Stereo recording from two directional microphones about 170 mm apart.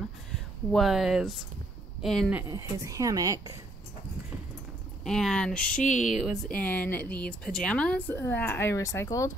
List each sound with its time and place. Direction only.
0.7 s speech: centre (ahead or behind)
2.3 s speech: 20° right (ahead or behind)
5.0 s speech: 5° left (ahead or behind)
5.8 s speech: 45° left (ahead or behind)
6.1 s speech: centre (ahead or behind); by 9.3 s 15° left (ahead or behind)